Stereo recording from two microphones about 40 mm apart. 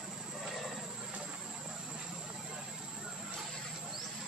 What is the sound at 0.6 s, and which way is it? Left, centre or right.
Vehicle, centre.